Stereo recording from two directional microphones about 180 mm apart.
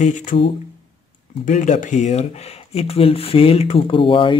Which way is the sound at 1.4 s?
45° left (ahead or behind).